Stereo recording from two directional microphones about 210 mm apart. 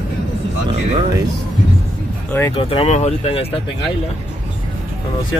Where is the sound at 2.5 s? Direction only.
25° left (ahead or behind).